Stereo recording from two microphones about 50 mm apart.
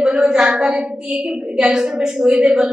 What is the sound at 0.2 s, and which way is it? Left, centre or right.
A woman's voice, centre.